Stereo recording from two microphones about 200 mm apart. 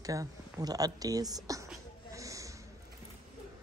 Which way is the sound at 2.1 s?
15° right (ahead or behind).